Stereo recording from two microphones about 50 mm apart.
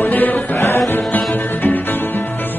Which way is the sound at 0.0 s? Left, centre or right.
Left.